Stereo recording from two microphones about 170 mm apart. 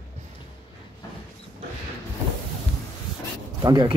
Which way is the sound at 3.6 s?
25° right (ahead or behind).